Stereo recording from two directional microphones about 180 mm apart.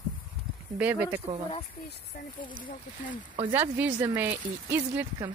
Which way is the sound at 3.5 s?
10° right (ahead or behind).